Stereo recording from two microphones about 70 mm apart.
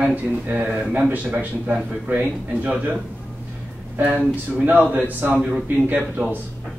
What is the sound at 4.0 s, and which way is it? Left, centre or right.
Speech, right.